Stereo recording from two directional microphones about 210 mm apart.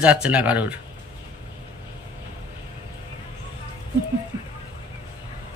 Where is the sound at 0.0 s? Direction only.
5° right (ahead or behind).